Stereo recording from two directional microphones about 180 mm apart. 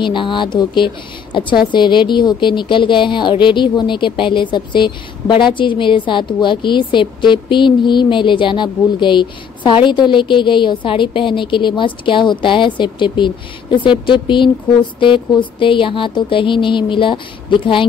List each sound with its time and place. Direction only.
0.0 s speech: 25° left (ahead or behind)